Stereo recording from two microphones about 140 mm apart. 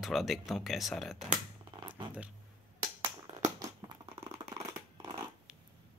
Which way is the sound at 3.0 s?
25° right (ahead or behind).